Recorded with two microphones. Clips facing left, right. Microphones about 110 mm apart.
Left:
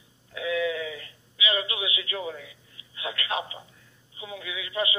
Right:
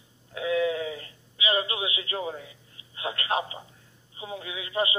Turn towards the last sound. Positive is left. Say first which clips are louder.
# right 2 dB
turn(degrees=-35)  # may be behind; listen again after turning